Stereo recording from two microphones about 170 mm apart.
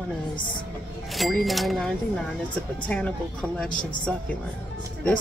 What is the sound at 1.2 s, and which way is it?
Speech, centre (ahead or behind).